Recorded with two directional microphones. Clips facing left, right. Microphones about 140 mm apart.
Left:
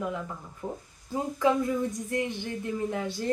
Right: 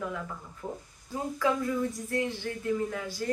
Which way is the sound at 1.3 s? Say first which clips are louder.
Left 3 dB; 20° left (ahead or behind).